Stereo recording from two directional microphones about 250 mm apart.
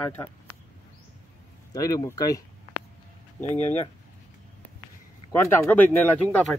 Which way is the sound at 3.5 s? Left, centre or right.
Left.